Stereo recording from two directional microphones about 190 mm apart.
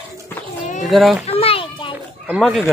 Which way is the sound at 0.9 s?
5° right (ahead or behind).